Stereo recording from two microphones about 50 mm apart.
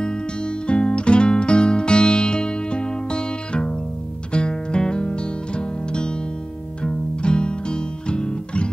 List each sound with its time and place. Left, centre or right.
0.7 s music: left